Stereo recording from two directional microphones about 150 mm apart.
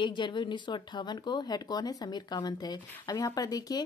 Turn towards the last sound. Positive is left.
turn(degrees=25)  # may be behind; listen again after turning